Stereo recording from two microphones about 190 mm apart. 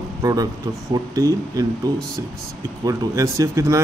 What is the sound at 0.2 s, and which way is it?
Speech, 20° right (ahead or behind).